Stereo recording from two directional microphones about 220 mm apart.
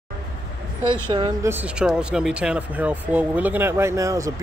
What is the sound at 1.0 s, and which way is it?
Speech, 20° right (ahead or behind).